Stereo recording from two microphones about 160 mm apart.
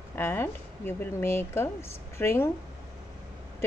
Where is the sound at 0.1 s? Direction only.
15° left (ahead or behind).